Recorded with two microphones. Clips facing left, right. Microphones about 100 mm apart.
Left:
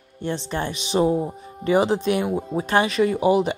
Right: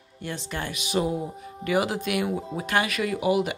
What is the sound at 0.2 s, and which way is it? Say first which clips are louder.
Speech: left 6 dB; 30° left (ahead or behind).